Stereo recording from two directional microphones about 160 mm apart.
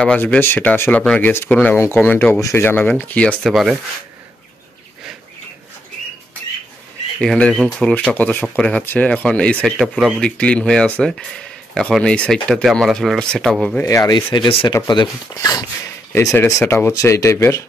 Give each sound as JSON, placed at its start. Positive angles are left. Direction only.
{"t": 0.0, "sound": "speech", "side_deg": 5}
{"t": 7.2, "sound": "speech", "side_deg": 5}
{"t": 13.8, "sound": "speech", "side_deg": 20}
{"t": 16.3, "sound": "speech", "side_deg": 15}